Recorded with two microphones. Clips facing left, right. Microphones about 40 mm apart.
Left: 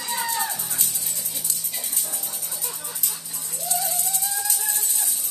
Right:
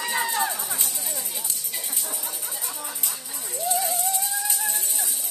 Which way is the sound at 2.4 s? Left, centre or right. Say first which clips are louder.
Right 2 dB; right.